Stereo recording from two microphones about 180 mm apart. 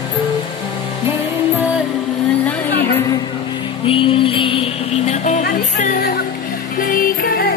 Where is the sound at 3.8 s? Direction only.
30° left (ahead or behind); by 7.5 s 55° left (ahead or behind).